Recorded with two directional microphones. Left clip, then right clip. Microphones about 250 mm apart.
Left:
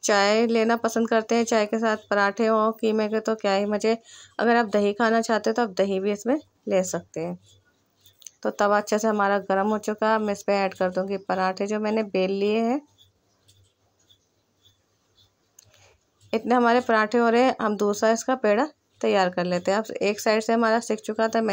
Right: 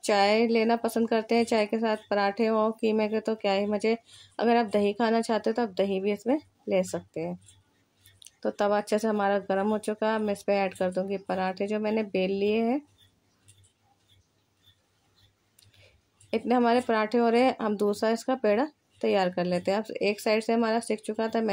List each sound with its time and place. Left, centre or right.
0.0 s a woman's voice: centre
15.7 s a woman's voice: centre